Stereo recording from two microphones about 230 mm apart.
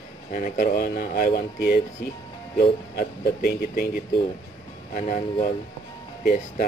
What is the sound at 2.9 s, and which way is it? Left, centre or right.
Speech, left.